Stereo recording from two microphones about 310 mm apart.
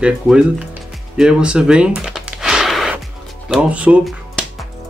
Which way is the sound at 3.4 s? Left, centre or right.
Centre.